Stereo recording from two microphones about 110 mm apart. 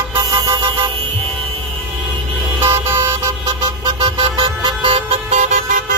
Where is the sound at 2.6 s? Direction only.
25° right (ahead or behind).